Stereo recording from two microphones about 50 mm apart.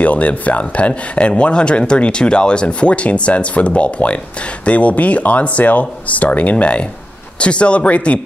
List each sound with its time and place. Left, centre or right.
0.0 s speech: left